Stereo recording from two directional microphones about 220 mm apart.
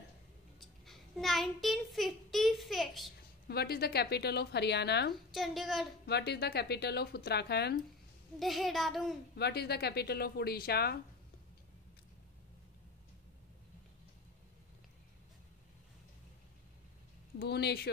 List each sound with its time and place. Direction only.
0.6 s a child's voice: centre (ahead or behind)
3.4 s speech: 45° left (ahead or behind)
5.1 s a woman's voice: centre (ahead or behind)
6.0 s speech: 50° left (ahead or behind)
8.4 s a woman's voice: centre (ahead or behind)
9.4 s speech: 45° left (ahead or behind)
17.4 s speech: 50° left (ahead or behind)